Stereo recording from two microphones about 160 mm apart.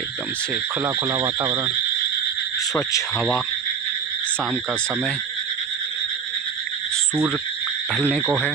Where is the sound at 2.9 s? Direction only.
20° left (ahead or behind).